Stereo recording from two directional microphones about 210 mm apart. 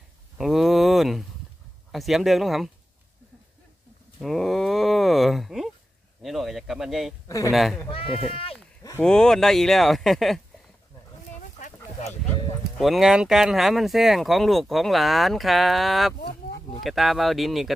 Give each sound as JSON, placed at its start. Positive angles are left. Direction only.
{"t": 0.4, "sound": "a sound", "side_deg": 0}
{"t": 1.9, "sound": "speech", "side_deg": 0}
{"t": 4.2, "sound": "a sound", "side_deg": 0}
{"t": 6.2, "sound": "speech", "side_deg": 0}
{"t": 7.2, "sound": "speech", "side_deg": 15}
{"t": 7.5, "sound": "speech", "side_deg": 0}
{"t": 7.9, "sound": "speech", "side_deg": 25}
{"t": 9.0, "sound": "speech", "side_deg": 5}
{"t": 12.7, "sound": "speech", "side_deg": 0}